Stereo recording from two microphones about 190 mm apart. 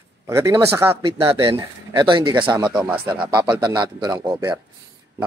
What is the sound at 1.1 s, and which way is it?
A man's voice, 30° right (ahead or behind).